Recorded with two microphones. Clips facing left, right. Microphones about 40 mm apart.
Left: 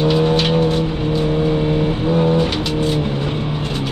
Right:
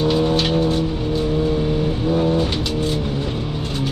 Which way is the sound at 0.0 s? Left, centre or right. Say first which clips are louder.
Left 2 dB; left.